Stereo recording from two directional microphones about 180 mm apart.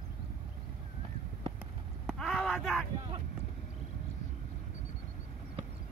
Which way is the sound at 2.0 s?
5° left (ahead or behind).